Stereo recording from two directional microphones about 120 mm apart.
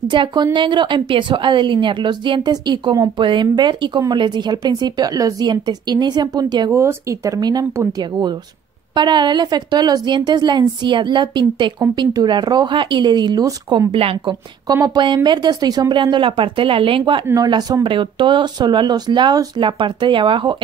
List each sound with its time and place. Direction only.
0.1 s a woman's voice: 40° right (ahead or behind)
13.9 s a woman's voice: 50° right (ahead or behind)
14.7 s a woman's voice: 35° right (ahead or behind)
17.3 s a woman's voice: 35° right (ahead or behind)